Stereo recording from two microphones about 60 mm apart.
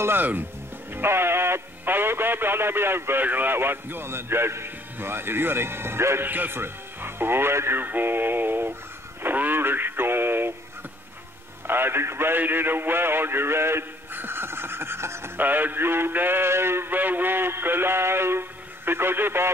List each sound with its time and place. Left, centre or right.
0.0 s synthetic singing: right
6.2 s synthetic singing: right
9.2 s radio: right
11.6 s synthetic singing: right
15.3 s synthetic singing: right